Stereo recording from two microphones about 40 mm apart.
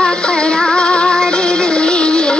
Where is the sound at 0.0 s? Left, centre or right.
Left.